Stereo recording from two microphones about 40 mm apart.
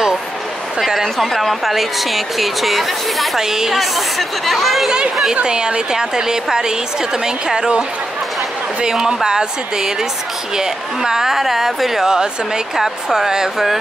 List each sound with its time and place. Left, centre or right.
0.7 s a woman's voice: centre
5.3 s a woman's voice: right
8.9 s speech: centre